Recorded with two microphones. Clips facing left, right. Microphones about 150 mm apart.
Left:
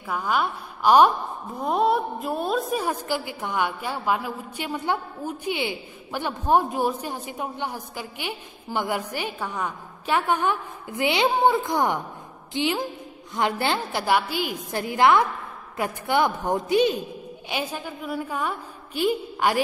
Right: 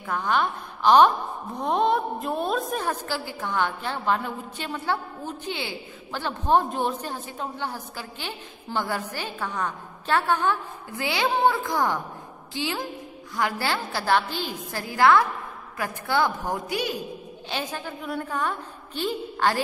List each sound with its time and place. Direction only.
0.0 s a woman's voice: 5° left (ahead or behind)
17.5 s a woman's voice: 10° left (ahead or behind)